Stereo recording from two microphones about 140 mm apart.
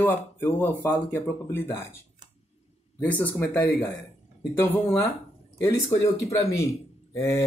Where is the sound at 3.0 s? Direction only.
10° left (ahead or behind).